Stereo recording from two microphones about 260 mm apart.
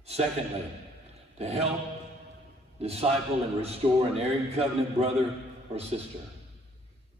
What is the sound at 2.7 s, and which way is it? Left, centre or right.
A man's voice, right.